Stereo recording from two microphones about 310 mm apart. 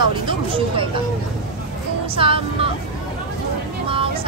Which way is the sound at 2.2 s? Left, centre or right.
Centre.